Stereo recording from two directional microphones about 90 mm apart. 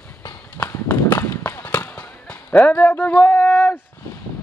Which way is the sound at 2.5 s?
20° left (ahead or behind).